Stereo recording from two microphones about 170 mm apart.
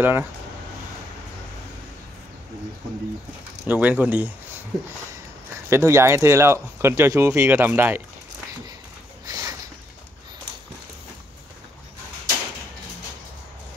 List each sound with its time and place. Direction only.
0.0 s speech: 10° right (ahead or behind)
3.6 s speech: 10° right (ahead or behind)
5.7 s speech: 15° right (ahead or behind)
9.2 s a sound: 20° right (ahead or behind)